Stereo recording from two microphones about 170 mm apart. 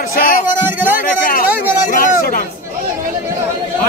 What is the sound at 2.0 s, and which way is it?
Speech, 55° left (ahead or behind).